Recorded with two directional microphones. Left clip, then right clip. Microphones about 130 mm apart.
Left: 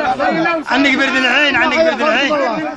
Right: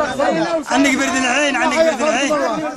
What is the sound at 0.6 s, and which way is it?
A man's voice, 10° right (ahead or behind).